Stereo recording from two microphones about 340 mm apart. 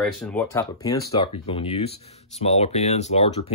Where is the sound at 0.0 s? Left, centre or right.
Centre.